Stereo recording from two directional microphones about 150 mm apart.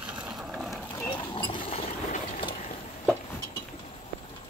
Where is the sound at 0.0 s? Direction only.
5° right (ahead or behind).